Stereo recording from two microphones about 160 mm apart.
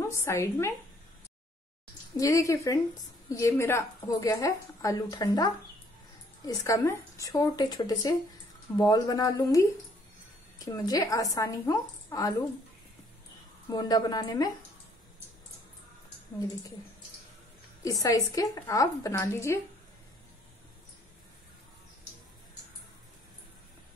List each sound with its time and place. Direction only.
0.1 s a woman's voice: 15° left (ahead or behind)
2.1 s a woman's voice: 20° left (ahead or behind)
13.7 s a woman's voice: 25° left (ahead or behind)
17.8 s a woman's voice: 20° left (ahead or behind)